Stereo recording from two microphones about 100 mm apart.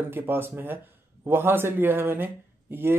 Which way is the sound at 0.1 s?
20° right (ahead or behind).